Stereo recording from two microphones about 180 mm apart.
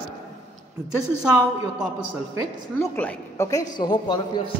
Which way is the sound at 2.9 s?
15° left (ahead or behind).